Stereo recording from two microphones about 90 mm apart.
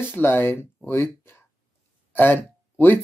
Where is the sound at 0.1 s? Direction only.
25° left (ahead or behind).